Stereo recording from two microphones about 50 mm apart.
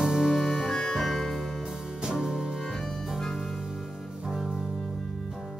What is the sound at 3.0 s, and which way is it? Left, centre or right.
Music, centre.